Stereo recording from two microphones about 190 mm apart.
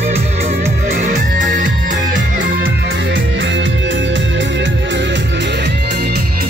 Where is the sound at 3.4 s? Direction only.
70° right (ahead or behind).